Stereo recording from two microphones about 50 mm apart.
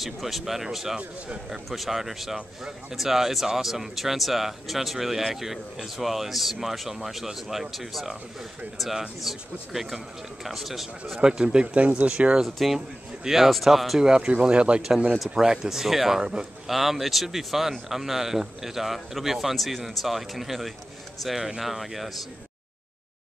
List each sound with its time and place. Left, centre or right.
0.0 s speech: centre
11.2 s speech: centre
12.4 s speech: centre
14.0 s speech: centre
15.1 s speech: centre
16.2 s speech: centre
16.6 s speech: centre